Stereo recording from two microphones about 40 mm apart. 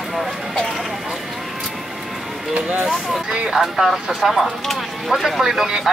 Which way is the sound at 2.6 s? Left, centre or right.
Right.